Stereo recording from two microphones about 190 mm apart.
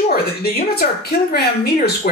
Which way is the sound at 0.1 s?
55° left (ahead or behind).